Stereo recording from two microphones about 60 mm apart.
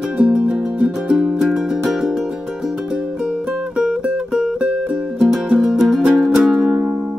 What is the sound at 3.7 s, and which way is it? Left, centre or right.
Music, centre.